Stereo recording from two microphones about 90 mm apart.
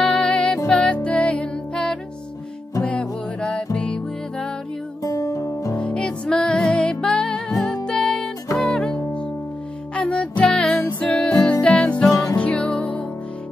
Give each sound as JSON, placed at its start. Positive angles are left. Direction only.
{"t": 0.0, "sound": "music", "side_deg": 15}
{"t": 5.0, "sound": "music", "side_deg": 40}
{"t": 5.8, "sound": "music", "side_deg": 10}
{"t": 12.1, "sound": "music", "side_deg": 35}
{"t": 12.4, "sound": "music", "side_deg": 15}